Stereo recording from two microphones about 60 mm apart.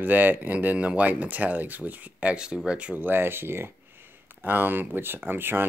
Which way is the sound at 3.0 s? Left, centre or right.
Right.